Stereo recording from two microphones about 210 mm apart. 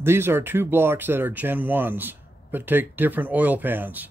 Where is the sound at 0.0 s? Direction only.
10° right (ahead or behind).